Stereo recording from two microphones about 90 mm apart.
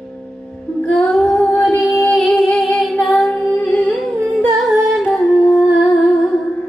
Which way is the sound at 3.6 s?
15° left (ahead or behind).